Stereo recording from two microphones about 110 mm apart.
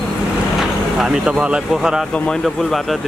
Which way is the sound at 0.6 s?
Centre (ahead or behind).